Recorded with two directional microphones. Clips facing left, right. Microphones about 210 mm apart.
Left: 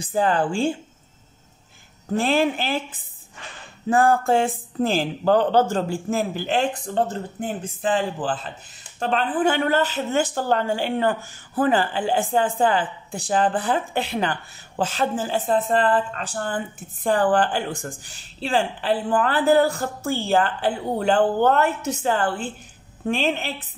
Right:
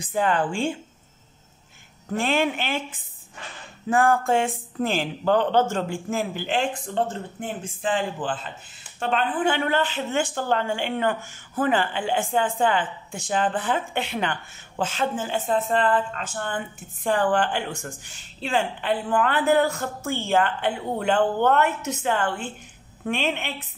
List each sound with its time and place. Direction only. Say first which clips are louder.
0.0 s speech: left 2 dB; 35° left (ahead or behind)
2.1 s speech: left 3 dB; 35° left (ahead or behind)
3.9 s speech: left 2 dB; 35° left (ahead or behind)